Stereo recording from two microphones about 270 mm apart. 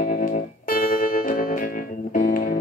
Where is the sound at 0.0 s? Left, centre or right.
Left.